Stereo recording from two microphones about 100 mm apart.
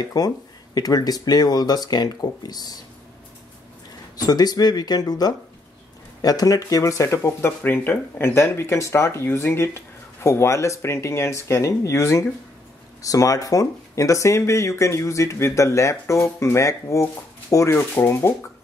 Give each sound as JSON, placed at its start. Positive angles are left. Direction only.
{"t": 0.2, "sound": "speech", "side_deg": 40}
{"t": 4.3, "sound": "speech", "side_deg": 40}